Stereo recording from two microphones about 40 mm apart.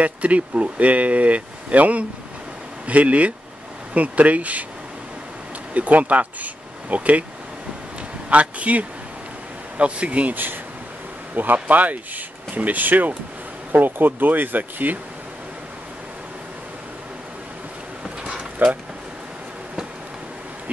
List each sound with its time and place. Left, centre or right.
0.0 s speech: right
5.8 s speech: right
8.3 s speech: right
10.3 s speech: right
11.3 s speech: right
18.2 s a sound: right